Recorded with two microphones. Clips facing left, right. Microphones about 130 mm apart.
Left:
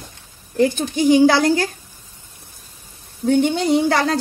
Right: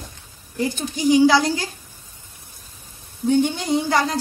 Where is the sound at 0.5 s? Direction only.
60° left (ahead or behind).